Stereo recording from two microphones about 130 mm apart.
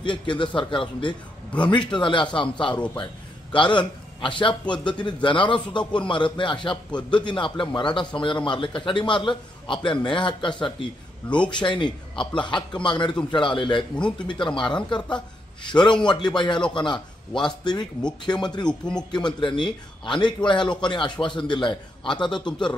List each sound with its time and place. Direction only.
0.0 s a man's voice: 40° left (ahead or behind)
18.7 s speech: 5° left (ahead or behind)
19.1 s a man's voice: 35° left (ahead or behind)